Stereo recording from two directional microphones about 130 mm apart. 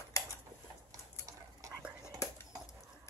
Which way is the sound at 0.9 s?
25° right (ahead or behind).